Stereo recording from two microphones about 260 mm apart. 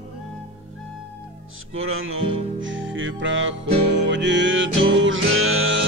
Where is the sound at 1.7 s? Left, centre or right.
Right.